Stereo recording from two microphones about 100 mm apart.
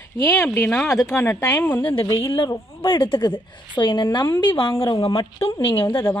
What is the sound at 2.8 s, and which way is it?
A woman's voice, 55° left (ahead or behind).